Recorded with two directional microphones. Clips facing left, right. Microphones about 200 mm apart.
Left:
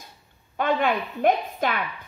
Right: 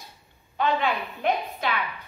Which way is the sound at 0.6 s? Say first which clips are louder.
Left 2 dB; 50° left (ahead or behind).